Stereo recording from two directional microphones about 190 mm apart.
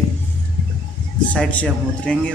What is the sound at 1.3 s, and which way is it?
A man's voice, 5° left (ahead or behind).